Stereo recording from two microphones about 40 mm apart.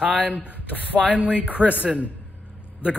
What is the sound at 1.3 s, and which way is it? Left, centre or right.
Speech, right.